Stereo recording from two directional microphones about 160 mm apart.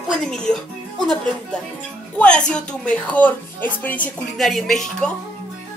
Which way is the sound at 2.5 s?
5° left (ahead or behind).